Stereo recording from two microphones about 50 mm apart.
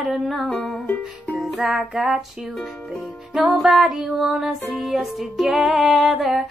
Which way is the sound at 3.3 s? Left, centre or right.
Centre.